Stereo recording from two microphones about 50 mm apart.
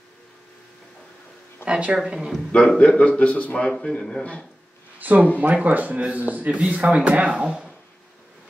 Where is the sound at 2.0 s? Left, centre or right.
Centre.